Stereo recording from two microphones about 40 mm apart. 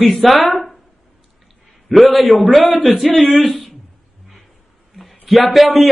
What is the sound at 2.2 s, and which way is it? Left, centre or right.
Speech, right.